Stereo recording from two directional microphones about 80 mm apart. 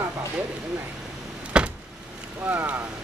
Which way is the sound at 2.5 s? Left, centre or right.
Right.